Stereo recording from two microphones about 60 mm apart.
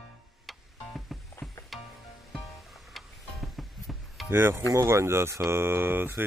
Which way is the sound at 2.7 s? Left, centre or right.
Centre.